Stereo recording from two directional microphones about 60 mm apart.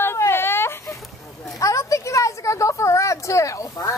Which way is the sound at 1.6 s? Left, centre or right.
Left.